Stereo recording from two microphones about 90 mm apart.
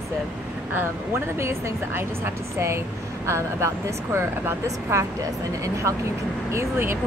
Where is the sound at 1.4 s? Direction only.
30° right (ahead or behind).